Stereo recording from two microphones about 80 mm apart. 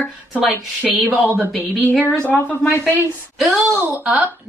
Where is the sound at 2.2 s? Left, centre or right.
Centre.